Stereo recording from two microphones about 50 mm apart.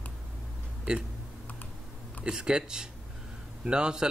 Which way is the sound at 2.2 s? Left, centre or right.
Centre.